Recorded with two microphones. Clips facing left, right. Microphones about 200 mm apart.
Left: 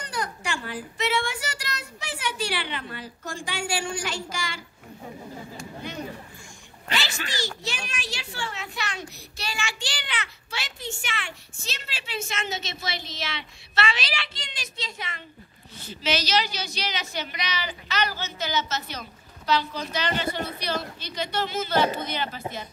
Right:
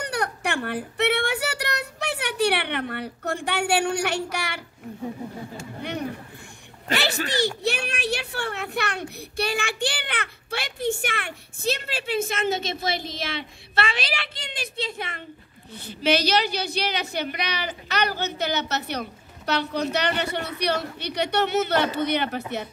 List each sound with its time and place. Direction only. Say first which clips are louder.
0.0 s child singing: right 5 dB; 65° right (ahead or behind)
5.8 s a sound: right 5 dB; 65° right (ahead or behind)
6.9 s a woman's voice: right 6 dB; 60° right (ahead or behind)